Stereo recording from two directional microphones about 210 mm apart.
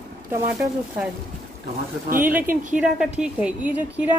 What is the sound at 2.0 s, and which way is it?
Speech, 40° right (ahead or behind).